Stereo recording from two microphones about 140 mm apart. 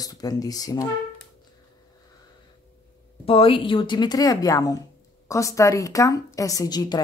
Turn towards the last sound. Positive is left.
turn(degrees=30)  # may be behind; listen again after turning